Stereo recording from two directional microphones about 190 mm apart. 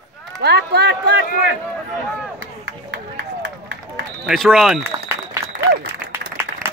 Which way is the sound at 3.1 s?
70° right (ahead or behind).